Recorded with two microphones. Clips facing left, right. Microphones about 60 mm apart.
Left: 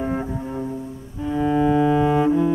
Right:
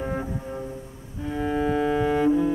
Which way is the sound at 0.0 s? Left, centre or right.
Left.